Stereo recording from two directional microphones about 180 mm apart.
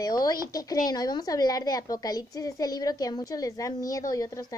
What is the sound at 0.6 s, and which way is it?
A woman's voice, 20° left (ahead or behind).